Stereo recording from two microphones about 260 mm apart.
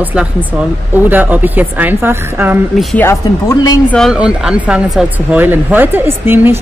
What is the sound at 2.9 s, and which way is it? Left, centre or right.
Speech, centre.